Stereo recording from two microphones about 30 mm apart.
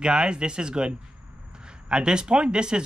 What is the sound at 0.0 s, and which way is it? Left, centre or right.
Speech, right.